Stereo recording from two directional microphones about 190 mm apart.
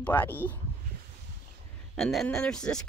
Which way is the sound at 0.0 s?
10° left (ahead or behind).